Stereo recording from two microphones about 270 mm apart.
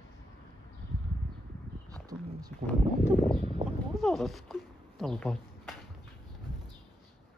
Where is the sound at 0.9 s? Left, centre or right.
Right.